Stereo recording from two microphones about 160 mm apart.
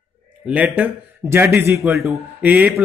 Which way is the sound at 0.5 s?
10° right (ahead or behind).